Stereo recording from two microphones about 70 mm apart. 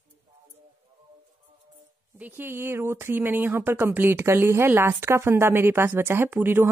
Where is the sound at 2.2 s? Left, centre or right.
Right.